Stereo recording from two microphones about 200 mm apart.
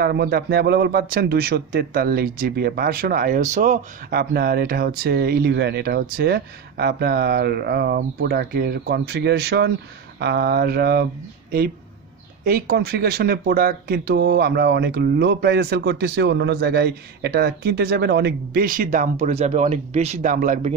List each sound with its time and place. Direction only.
0.0 s speech: 50° right (ahead or behind)
4.1 s speech: 50° right (ahead or behind)
12.4 s speech: 50° right (ahead or behind)